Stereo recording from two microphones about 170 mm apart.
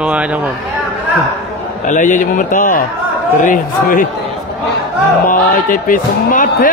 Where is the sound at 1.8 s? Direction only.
50° left (ahead or behind).